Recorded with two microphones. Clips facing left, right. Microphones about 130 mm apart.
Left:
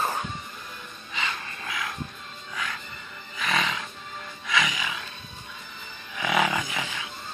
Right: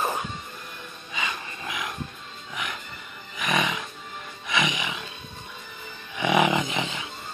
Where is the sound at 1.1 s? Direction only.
15° right (ahead or behind).